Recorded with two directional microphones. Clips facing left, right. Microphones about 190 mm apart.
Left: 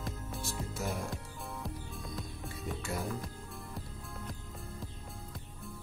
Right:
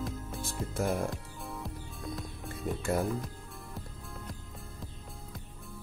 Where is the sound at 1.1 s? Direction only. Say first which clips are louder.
Right 1 dB; centre (ahead or behind).